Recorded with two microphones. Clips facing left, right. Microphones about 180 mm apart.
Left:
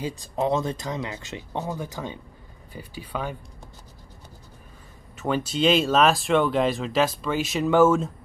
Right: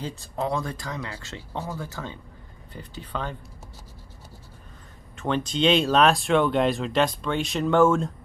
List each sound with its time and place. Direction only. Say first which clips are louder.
0.0 s speech: left 3 dB; 15° left (ahead or behind)
5.1 s speech: left 1 dB; 5° left (ahead or behind)